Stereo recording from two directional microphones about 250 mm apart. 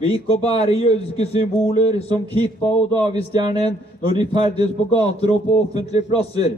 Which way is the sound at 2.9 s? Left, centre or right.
Centre.